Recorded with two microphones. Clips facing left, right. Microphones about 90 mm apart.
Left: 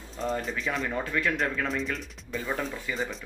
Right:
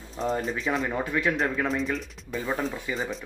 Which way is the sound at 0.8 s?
15° right (ahead or behind).